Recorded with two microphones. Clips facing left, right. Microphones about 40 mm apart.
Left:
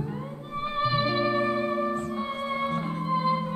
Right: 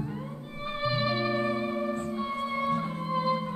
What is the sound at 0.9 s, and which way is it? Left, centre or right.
Music, left.